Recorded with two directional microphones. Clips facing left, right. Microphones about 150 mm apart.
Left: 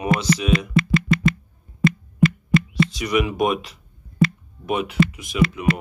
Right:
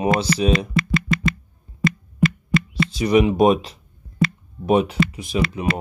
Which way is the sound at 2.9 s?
30° right (ahead or behind).